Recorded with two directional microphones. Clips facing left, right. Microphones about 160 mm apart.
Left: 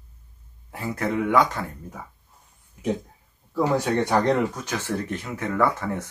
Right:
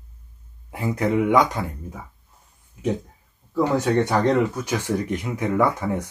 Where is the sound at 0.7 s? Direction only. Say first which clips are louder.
Right 4 dB; 15° right (ahead or behind).